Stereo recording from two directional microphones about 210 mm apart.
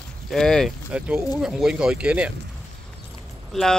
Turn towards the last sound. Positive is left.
turn(degrees=0)  # may be behind; listen again after turning